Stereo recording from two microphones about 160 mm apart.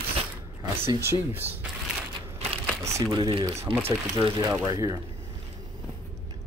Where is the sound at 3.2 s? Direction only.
30° right (ahead or behind).